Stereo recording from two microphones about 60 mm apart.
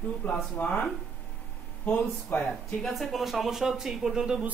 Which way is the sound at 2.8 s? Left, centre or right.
Centre.